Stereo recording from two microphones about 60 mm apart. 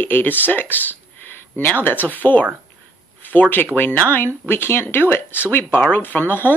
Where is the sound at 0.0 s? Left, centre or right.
Left.